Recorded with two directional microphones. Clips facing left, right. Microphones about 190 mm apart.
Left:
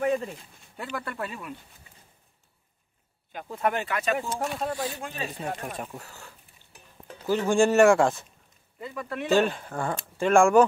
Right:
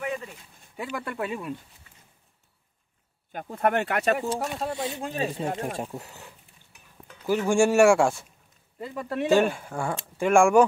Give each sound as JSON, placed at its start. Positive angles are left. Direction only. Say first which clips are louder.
{"t": 0.0, "sound": "a sound", "louder": "left 6 dB", "side_deg": 40}
{"t": 0.7, "sound": "speech", "louder": "right 2 dB", "side_deg": -15}
{"t": 3.3, "sound": "speech", "louder": "right 2 dB", "side_deg": -50}
{"t": 4.3, "sound": "speech", "louder": "right 1 dB", "side_deg": -25}
{"t": 6.7, "sound": "stir", "louder": "left 5 dB", "side_deg": 30}
{"t": 7.4, "sound": "speech", "louder": "even", "side_deg": -10}
{"t": 8.7, "sound": "speech", "louder": "right 3 dB", "side_deg": -30}
{"t": 9.3, "sound": "speech", "louder": "right 1 dB", "side_deg": -10}